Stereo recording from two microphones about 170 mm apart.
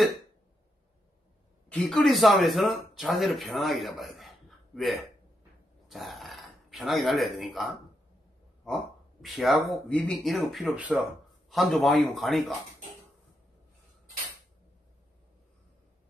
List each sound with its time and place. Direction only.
1.7 s a man's voice: 5° left (ahead or behind)
9.2 s speech: centre (ahead or behind)